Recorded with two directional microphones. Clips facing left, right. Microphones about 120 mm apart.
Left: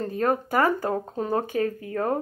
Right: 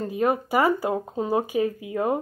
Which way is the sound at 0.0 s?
10° right (ahead or behind).